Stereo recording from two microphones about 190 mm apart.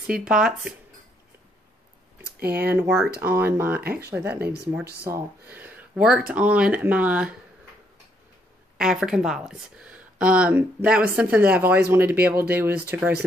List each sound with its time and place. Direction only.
0.0 s speech: 5° right (ahead or behind)
2.4 s speech: 55° right (ahead or behind)
2.7 s speech: 10° right (ahead or behind)
3.8 s speech: 55° right (ahead or behind)
4.4 s speech: 5° right (ahead or behind)
8.7 s speech: 5° right (ahead or behind)